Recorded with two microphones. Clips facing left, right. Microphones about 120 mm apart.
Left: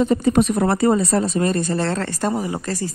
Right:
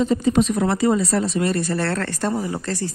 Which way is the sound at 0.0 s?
50° left (ahead or behind).